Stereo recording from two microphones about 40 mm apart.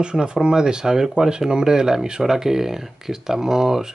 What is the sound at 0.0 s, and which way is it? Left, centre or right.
Speech, right.